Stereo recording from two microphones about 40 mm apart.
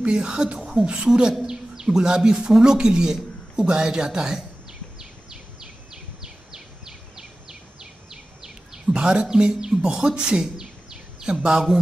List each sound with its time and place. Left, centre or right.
0.0 s a man's voice: right
6.2 s bird: centre